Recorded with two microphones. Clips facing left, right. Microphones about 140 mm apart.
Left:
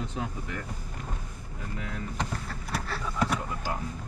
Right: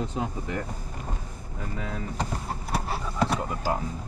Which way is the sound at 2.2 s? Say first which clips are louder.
Right 3 dB; 35° right (ahead or behind).